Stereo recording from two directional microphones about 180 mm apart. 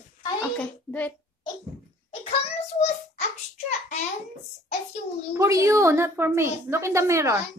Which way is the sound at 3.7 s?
40° left (ahead or behind).